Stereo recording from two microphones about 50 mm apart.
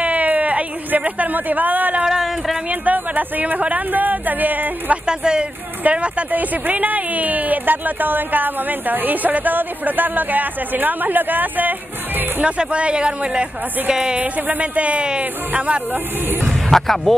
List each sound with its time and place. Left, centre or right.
0.0 s a sound: right
2.0 s speech: centre
2.7 s speech: right
5.0 s speech: centre
5.9 s speech: right
12.4 s speech: right
16.7 s speech: centre